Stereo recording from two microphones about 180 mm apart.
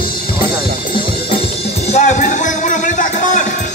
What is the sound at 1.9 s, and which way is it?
Music, 40° left (ahead or behind).